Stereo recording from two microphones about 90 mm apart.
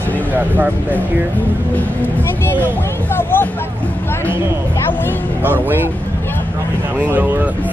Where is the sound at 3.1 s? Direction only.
25° left (ahead or behind).